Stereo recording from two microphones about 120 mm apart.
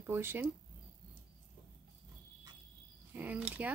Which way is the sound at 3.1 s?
15° right (ahead or behind).